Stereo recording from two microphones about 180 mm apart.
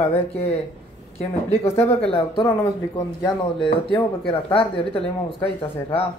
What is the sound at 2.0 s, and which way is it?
Speech, 30° left (ahead or behind).